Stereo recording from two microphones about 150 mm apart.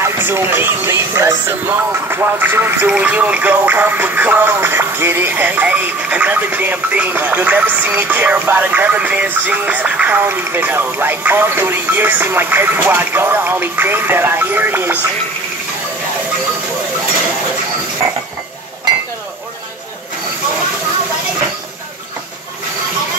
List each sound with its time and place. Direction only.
0.0 s speech: 15° right (ahead or behind)